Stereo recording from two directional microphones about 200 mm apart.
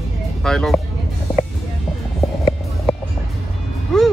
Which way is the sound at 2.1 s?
Centre (ahead or behind).